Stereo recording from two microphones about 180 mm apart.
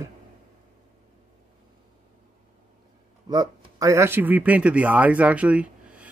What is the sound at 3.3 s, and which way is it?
A man's voice, 25° right (ahead or behind).